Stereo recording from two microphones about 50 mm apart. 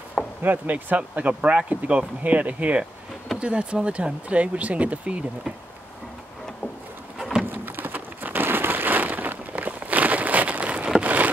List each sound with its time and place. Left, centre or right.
0.4 s speech: right
7.2 s pigeon: centre
7.4 s a sound: right